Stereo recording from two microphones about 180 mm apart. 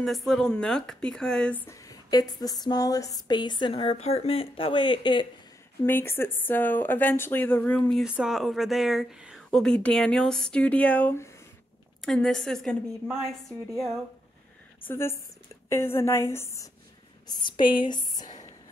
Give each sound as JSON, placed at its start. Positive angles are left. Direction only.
{"t": 0.0, "sound": "speech", "side_deg": 0}
{"t": 5.9, "sound": "a woman's voice", "side_deg": 10}
{"t": 14.9, "sound": "speech", "side_deg": 15}
{"t": 17.3, "sound": "speech", "side_deg": 25}